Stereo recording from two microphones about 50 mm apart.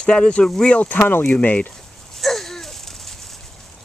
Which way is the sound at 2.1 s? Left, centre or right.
Centre.